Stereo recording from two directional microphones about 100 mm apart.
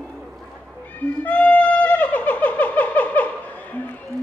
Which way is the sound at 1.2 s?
15° left (ahead or behind).